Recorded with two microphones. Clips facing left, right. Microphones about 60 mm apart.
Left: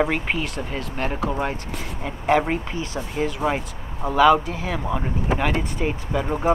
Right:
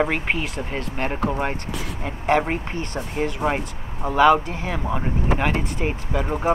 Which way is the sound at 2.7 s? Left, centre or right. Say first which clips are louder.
Even; right.